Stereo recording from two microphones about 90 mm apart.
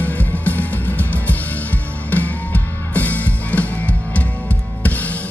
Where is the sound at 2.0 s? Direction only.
20° left (ahead or behind).